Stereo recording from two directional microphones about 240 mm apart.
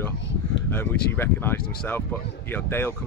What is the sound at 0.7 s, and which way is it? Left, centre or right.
Speech, centre.